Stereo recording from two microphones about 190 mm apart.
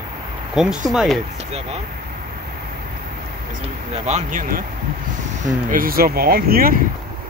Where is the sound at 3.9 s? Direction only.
35° right (ahead or behind).